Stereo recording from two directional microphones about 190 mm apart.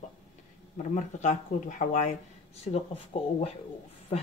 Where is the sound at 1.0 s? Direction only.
40° left (ahead or behind).